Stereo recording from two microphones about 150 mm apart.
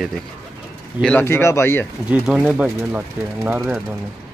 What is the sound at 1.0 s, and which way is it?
Speech, 10° left (ahead or behind).